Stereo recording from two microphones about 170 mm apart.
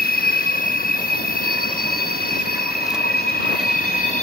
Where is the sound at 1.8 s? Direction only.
60° left (ahead or behind).